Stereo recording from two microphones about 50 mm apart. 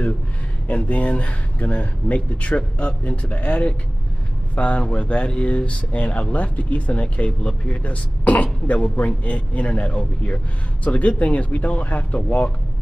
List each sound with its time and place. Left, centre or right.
0.7 s speech: left